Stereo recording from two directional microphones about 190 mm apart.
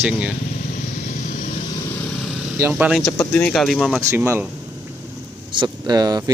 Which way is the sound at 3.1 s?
5° left (ahead or behind).